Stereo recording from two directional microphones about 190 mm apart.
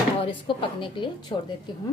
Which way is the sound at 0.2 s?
25° left (ahead or behind).